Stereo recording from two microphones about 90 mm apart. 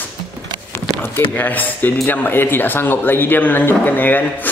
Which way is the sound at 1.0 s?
20° left (ahead or behind).